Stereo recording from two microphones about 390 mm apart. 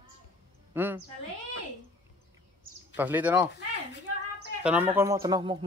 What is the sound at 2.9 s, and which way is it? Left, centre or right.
Speech, centre.